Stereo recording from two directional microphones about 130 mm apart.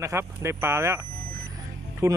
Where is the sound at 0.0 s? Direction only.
20° right (ahead or behind).